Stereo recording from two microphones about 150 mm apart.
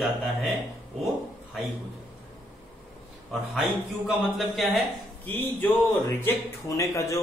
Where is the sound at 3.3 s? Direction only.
5° right (ahead or behind).